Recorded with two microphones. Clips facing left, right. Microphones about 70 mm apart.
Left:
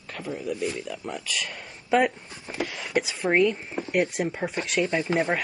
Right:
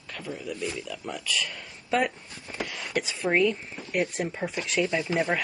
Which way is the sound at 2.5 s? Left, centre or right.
Centre.